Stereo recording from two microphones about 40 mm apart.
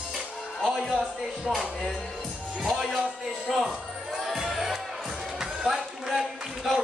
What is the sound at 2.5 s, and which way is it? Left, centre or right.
Music, centre.